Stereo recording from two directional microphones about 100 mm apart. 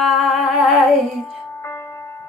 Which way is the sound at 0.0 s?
Centre (ahead or behind).